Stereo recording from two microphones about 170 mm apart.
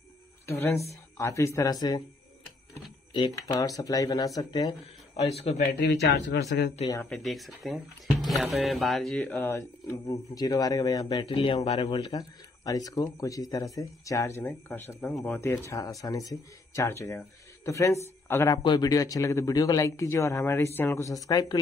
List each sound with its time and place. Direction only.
0.5 s speech: 15° left (ahead or behind)
3.1 s speech: 25° left (ahead or behind)
5.2 s speech: 40° left (ahead or behind)
5.8 s speech: 85° left
6.9 s speech: 15° left (ahead or behind)
7.2 s speech: centre (ahead or behind); by 21.5 s 20° left (ahead or behind)